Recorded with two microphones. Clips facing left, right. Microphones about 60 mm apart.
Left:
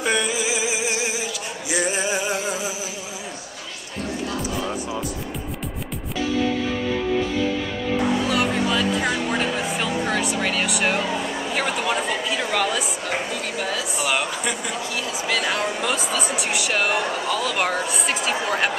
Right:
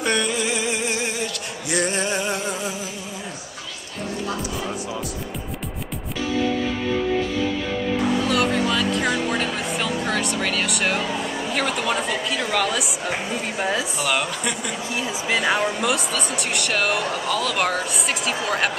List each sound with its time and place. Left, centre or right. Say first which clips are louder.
0.0 s a sound: even; centre
8.3 s a sound: right 1 dB; centre
11.5 s speech: even; centre
13.3 s speech: right 2 dB; right
14.0 s speech: left 2 dB; centre
15.2 s speech: right 3 dB; centre
15.6 s speech: right 2 dB; centre